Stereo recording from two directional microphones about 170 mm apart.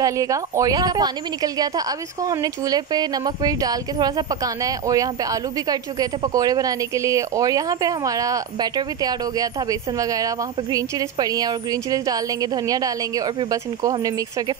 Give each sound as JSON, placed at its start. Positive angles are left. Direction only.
{"t": 0.0, "sound": "speech", "side_deg": -20}